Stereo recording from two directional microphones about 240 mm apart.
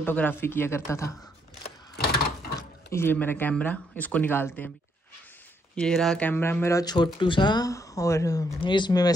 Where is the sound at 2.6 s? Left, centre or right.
Centre.